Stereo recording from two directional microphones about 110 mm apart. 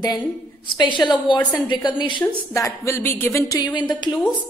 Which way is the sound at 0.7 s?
45° left (ahead or behind).